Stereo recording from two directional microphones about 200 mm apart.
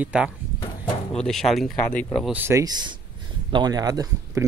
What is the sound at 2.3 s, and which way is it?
Speech, 10° right (ahead or behind).